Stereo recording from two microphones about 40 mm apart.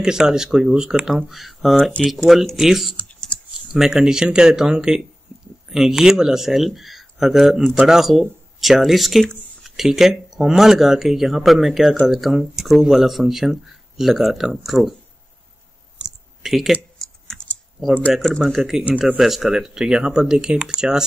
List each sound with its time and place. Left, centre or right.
0.0 s speech: centre
16.0 s a sound: right
16.4 s speech: centre
17.0 s typing: centre
18.1 s speech: centre